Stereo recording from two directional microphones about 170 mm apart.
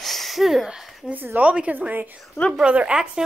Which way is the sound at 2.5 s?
5° right (ahead or behind).